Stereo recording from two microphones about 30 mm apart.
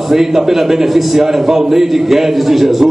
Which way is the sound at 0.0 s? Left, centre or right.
Centre.